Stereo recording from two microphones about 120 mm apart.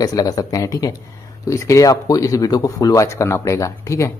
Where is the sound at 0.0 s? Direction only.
30° left (ahead or behind).